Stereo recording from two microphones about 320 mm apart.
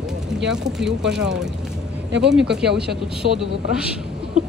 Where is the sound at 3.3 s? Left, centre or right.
Centre.